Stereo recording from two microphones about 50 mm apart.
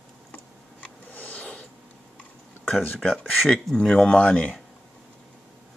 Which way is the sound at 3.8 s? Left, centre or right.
Centre.